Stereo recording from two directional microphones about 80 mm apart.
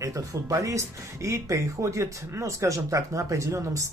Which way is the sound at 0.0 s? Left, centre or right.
Right.